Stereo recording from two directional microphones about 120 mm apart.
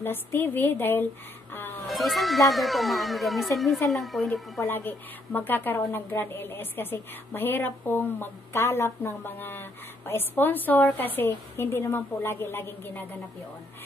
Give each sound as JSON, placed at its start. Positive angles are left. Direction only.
{"t": 0.0, "sound": "a woman's voice", "side_deg": 20}
{"t": 1.5, "sound": "a sound", "side_deg": 15}
{"t": 1.9, "sound": "speech", "side_deg": 0}
{"t": 4.6, "sound": "a woman's voice", "side_deg": 15}